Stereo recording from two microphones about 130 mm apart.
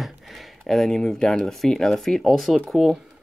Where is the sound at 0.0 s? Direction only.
Centre (ahead or behind).